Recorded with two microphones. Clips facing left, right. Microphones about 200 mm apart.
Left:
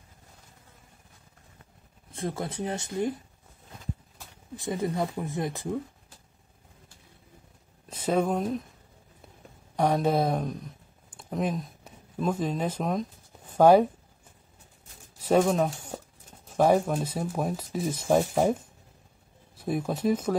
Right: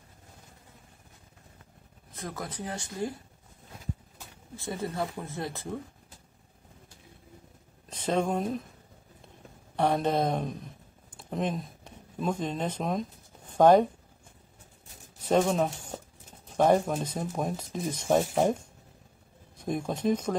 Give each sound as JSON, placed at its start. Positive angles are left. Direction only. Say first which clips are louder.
{"t": 2.1, "sound": "speech", "louder": "left 6 dB", "side_deg": 25}
{"t": 4.6, "sound": "speech", "louder": "left 4 dB", "side_deg": 15}
{"t": 7.9, "sound": "speech", "louder": "left 2 dB", "side_deg": 10}
{"t": 9.8, "sound": "speech", "louder": "left 2 dB", "side_deg": 10}
{"t": 15.1, "sound": "speech", "louder": "left 2 dB", "side_deg": 5}